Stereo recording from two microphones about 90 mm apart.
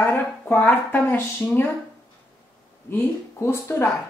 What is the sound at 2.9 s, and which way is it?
Speech, 25° left (ahead or behind).